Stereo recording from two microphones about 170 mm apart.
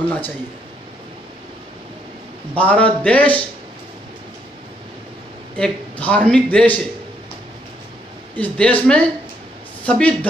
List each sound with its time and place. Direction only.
2.5 s a man's voice: 10° left (ahead or behind)
5.6 s a man's voice: 5° left (ahead or behind)
8.4 s a man's voice: 5° left (ahead or behind)